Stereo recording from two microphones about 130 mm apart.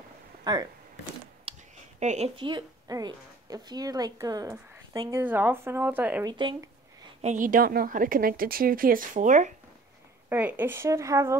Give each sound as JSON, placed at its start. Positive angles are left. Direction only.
{"t": 0.4, "sound": "a sound", "side_deg": -30}
{"t": 1.5, "sound": "a sound", "side_deg": -50}
{"t": 2.0, "sound": "a woman's voice", "side_deg": -60}
{"t": 2.3, "sound": "a woman's voice", "side_deg": -35}
{"t": 5.1, "sound": "speech", "side_deg": -15}
{"t": 6.2, "sound": "speech", "side_deg": -40}
{"t": 7.2, "sound": "a woman's voice", "side_deg": -75}
{"t": 10.3, "sound": "speech", "side_deg": -15}